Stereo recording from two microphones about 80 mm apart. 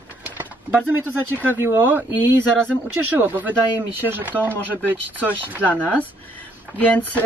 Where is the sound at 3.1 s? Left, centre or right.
Right.